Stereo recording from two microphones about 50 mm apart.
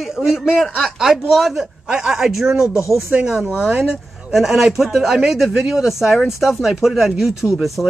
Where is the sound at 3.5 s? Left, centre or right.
Centre.